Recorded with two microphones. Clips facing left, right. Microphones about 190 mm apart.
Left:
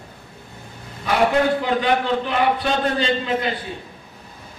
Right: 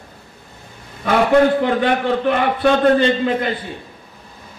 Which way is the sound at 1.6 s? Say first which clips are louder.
Right 3 dB; 55° right (ahead or behind).